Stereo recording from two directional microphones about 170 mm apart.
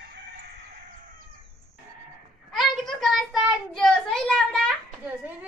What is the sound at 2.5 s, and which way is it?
Child singing, centre (ahead or behind).